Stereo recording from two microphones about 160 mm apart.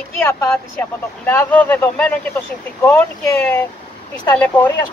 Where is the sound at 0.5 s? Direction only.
10° left (ahead or behind).